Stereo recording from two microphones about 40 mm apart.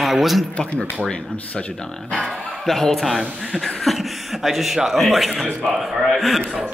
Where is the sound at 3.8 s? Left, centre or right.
Centre.